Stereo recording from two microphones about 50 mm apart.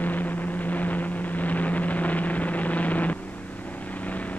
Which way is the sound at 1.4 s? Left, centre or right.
Left.